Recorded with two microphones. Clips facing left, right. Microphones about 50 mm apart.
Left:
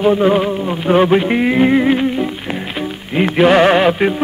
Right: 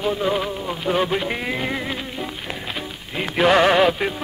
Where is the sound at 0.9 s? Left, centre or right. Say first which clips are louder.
Left 10 dB; left.